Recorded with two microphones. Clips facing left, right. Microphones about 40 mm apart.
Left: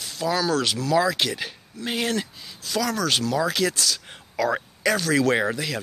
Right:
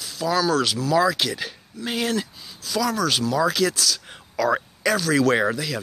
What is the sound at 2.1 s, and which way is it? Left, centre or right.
Speech, left.